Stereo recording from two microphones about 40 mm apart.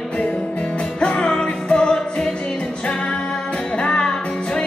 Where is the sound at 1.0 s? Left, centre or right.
Left.